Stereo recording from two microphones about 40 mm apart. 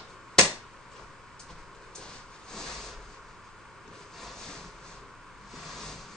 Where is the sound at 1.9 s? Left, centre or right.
Centre.